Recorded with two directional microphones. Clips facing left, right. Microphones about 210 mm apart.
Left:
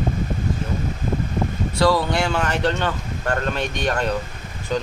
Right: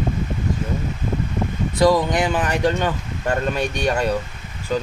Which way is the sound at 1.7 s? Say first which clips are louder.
Right 2 dB; 15° right (ahead or behind).